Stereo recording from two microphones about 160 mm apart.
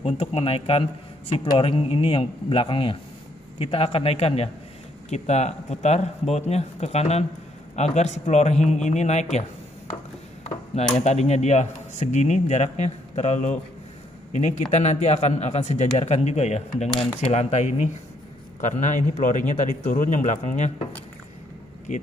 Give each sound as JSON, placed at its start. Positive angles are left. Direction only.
{"t": 0.0, "sound": "a man's voice", "side_deg": 35}
{"t": 10.4, "sound": "ping", "side_deg": 45}
{"t": 11.0, "sound": "a man's voice", "side_deg": 45}
{"t": 21.9, "sound": "a man's voice", "side_deg": 50}